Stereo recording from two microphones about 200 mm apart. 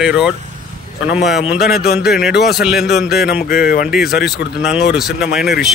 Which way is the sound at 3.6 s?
45° left (ahead or behind).